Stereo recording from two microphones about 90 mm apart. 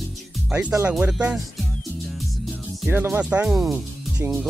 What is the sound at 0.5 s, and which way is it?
Speech, 15° right (ahead or behind).